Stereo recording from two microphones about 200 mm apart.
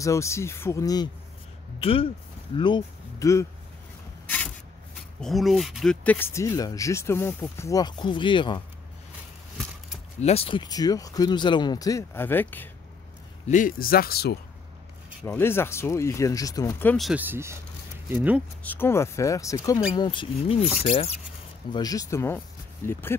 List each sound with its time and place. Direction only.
0.0 s speech: 15° left (ahead or behind)
5.2 s speech: centre (ahead or behind); by 8.6 s 25° left (ahead or behind)
10.2 s speech: 30° left (ahead or behind); by 12.6 s 10° left (ahead or behind)
13.5 s speech: 40° left (ahead or behind)
15.2 s speech: 10° left (ahead or behind)
16.9 s speech: 5° right (ahead or behind)
18.6 s speech: 10° left (ahead or behind); by 21.1 s 30° left (ahead or behind)
21.7 s speech: 20° left (ahead or behind)